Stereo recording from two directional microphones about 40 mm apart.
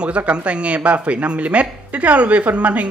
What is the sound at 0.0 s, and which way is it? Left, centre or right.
Speech, right.